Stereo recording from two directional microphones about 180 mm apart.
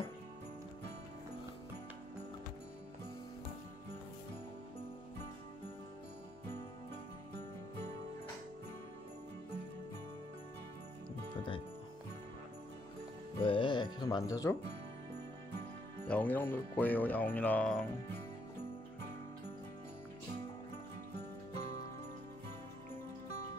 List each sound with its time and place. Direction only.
13.4 s music: 30° left (ahead or behind)
16.1 s music: 10° left (ahead or behind)